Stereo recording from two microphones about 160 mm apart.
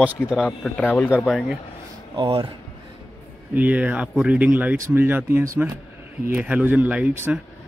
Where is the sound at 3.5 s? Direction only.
10° right (ahead or behind).